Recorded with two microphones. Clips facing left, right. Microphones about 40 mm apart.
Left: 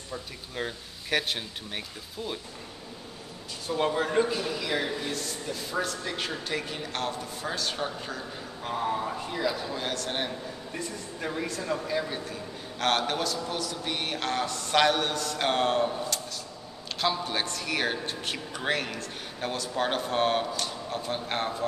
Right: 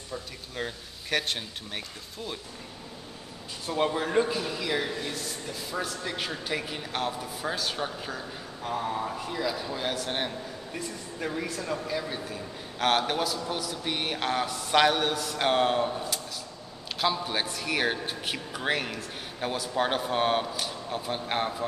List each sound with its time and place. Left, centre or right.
0.1 s a man's voice: centre
3.7 s a man's voice: centre
12.3 s a man's voice: centre